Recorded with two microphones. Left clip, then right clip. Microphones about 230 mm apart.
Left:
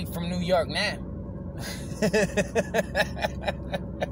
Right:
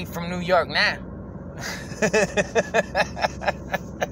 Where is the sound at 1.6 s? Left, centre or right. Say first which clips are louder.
Right 4 dB; centre.